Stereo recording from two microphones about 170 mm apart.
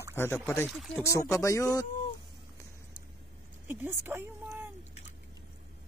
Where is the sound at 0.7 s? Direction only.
Centre (ahead or behind).